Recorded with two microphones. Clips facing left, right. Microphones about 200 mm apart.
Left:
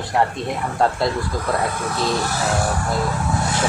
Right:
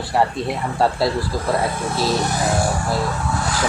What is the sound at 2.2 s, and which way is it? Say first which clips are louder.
Speech: right 2 dB; 20° right (ahead or behind).